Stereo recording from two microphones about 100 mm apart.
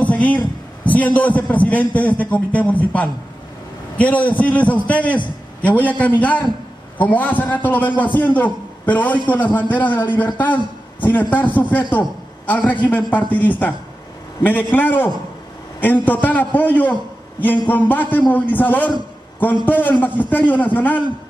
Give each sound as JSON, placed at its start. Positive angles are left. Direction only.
{"t": 0.0, "sound": "a man's voice", "side_deg": 15}